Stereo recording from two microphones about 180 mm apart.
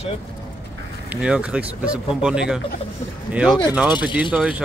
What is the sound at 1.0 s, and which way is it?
Speech, 5° right (ahead or behind).